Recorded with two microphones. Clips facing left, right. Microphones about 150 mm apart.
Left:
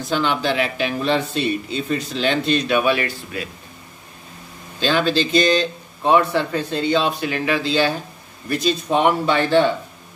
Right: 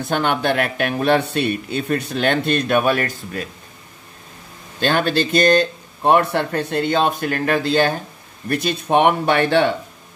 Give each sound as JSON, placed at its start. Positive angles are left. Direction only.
{"t": 0.0, "sound": "speech", "side_deg": -55}
{"t": 4.7, "sound": "speech", "side_deg": -55}